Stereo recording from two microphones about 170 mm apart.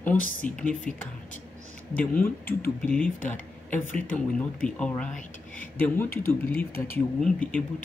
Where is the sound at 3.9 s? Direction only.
50° left (ahead or behind).